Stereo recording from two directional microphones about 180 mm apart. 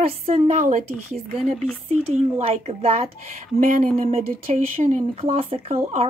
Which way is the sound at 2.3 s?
35° right (ahead or behind).